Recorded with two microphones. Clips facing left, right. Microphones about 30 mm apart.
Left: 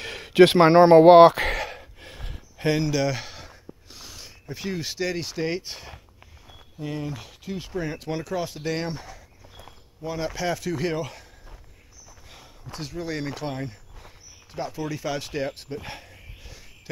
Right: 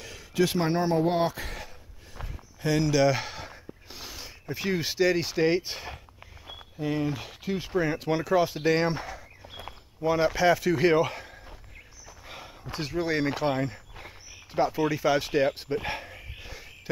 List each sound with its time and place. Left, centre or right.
0.0 s a sound: left
2.9 s speech: centre
9.5 s walk: right
10.0 s speech: centre
12.3 s speech: right
16.3 s a sound: centre